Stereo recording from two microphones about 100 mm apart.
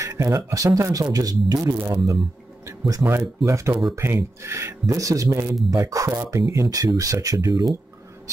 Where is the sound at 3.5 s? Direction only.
30° right (ahead or behind).